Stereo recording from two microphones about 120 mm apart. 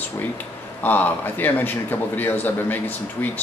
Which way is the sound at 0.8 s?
15° left (ahead or behind).